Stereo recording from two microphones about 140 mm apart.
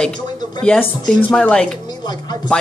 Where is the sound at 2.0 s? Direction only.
30° left (ahead or behind).